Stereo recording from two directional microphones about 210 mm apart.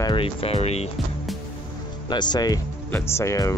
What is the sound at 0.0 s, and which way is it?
Speech, 25° left (ahead or behind).